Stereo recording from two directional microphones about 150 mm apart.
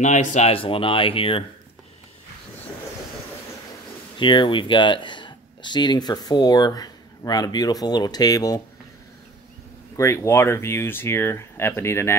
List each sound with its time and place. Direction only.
0.0 s speech: 55° left (ahead or behind)
0.5 s speech: 35° left (ahead or behind)
4.2 s speech: 35° left (ahead or behind)
9.9 s speech: 20° left (ahead or behind)